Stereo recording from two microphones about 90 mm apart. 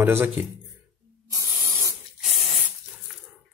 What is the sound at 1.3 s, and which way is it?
Spray, 35° right (ahead or behind).